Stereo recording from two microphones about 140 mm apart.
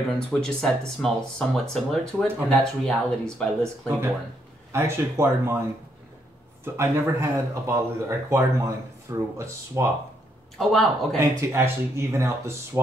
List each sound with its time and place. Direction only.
0.3 s speech: 5° left (ahead or behind)
4.7 s speech: 20° right (ahead or behind)
6.6 s speech: 15° right (ahead or behind)
10.6 s speech: centre (ahead or behind)
11.1 s speech: 15° right (ahead or behind)